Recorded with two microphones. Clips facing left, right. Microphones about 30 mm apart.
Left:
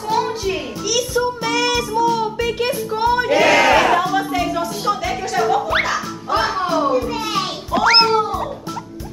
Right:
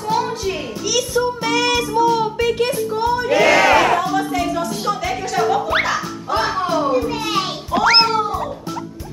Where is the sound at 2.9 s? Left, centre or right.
Centre.